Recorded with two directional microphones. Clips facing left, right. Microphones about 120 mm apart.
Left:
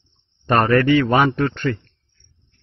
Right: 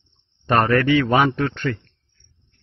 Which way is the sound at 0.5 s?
15° left (ahead or behind).